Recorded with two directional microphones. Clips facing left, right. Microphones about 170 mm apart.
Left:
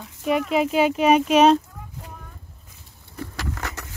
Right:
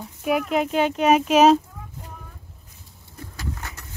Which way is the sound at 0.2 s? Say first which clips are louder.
Left 1 dB; 5° right (ahead or behind).